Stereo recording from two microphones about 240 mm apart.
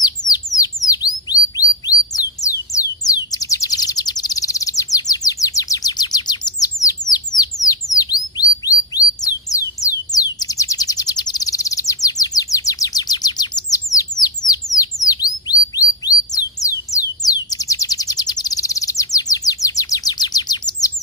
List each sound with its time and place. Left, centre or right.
0.0 s bird: centre